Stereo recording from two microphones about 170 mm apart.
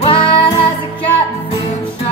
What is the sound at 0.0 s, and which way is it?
Music, 35° left (ahead or behind).